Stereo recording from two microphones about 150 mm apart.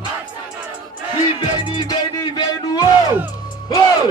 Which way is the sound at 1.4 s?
30° left (ahead or behind).